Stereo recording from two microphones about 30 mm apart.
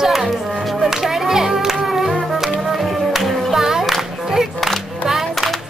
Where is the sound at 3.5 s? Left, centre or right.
Centre.